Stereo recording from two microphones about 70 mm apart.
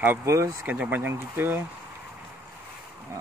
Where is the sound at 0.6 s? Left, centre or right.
Centre.